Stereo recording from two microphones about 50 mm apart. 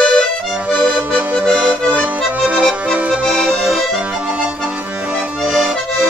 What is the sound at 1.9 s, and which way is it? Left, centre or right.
Accordion, right.